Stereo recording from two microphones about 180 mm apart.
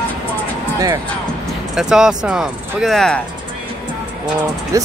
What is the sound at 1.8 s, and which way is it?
Speech, 5° right (ahead or behind).